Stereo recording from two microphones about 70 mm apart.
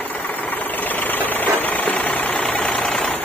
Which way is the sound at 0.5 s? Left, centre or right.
Left.